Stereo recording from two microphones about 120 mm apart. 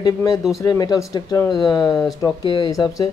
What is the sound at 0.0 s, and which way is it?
Speech, 35° left (ahead or behind).